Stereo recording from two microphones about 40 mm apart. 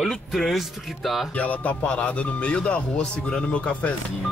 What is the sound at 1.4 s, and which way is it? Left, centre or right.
Speech, left.